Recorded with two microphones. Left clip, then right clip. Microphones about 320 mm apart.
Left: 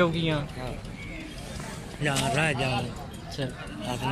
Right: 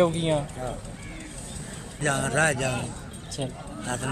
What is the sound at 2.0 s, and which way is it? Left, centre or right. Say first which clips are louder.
Speech: right 2 dB; right.